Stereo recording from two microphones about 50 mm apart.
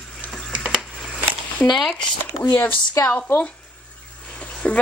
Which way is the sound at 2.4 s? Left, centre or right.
Left.